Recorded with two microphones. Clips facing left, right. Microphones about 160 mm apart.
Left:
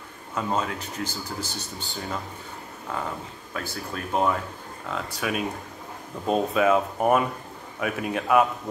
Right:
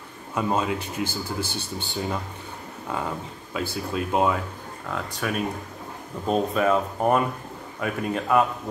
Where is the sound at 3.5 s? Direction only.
20° right (ahead or behind).